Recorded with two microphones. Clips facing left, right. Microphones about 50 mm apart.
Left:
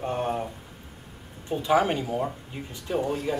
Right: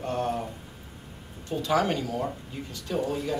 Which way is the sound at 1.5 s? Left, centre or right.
Centre.